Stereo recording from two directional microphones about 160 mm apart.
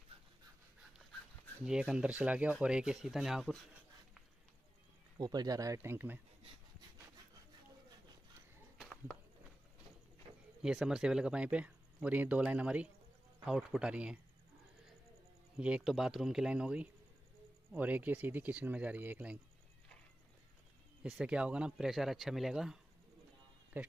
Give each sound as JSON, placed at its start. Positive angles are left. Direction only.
{"t": 1.7, "sound": "speech", "side_deg": -5}
{"t": 5.2, "sound": "speech", "side_deg": -25}
{"t": 10.6, "sound": "speech", "side_deg": -5}
{"t": 15.5, "sound": "speech", "side_deg": -5}
{"t": 21.0, "sound": "speech", "side_deg": -5}